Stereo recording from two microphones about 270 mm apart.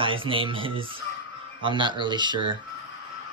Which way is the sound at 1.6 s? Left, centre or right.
Centre.